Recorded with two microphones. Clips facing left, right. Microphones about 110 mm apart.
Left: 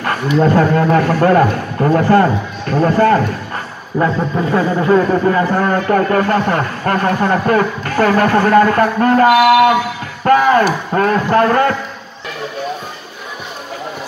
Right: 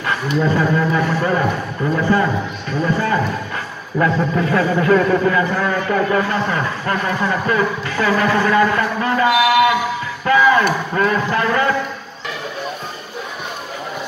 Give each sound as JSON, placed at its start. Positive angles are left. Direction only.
{"t": 0.0, "sound": "a man's voice", "side_deg": 50}
{"t": 4.0, "sound": "a man's voice", "side_deg": 30}
{"t": 10.2, "sound": "a sound", "side_deg": 50}
{"t": 10.6, "sound": "a man's voice", "side_deg": 45}